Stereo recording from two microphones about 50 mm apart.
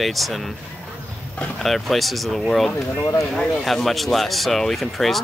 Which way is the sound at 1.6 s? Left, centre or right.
Centre.